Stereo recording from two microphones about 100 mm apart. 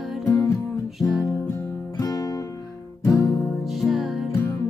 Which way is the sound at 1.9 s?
35° left (ahead or behind).